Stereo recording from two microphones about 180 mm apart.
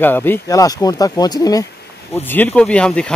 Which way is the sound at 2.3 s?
5° left (ahead or behind).